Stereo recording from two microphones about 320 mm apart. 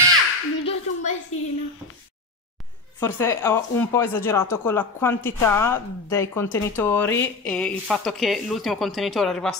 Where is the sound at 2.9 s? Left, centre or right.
Centre.